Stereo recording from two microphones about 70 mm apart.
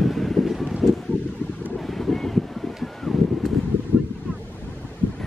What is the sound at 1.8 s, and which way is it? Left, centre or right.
Boat, centre.